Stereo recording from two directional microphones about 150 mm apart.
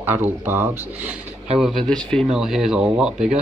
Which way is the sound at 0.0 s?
15° right (ahead or behind).